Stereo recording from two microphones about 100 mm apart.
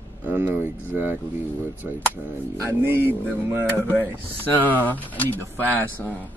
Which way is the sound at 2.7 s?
20° right (ahead or behind).